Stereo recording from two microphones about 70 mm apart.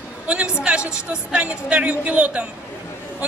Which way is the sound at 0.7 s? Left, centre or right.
Centre.